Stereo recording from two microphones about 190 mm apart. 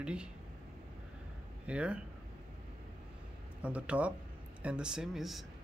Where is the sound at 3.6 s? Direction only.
5° right (ahead or behind).